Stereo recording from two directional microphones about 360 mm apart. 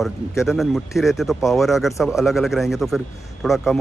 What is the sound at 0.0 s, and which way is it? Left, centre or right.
Speech, centre.